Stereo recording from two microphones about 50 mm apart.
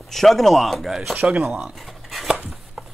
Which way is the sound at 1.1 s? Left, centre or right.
Right.